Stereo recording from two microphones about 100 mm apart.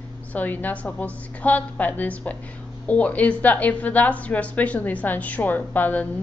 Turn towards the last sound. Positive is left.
turn(degrees=15)  # may be behind; listen again after turning